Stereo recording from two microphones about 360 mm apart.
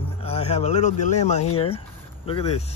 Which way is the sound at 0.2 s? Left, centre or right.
Centre.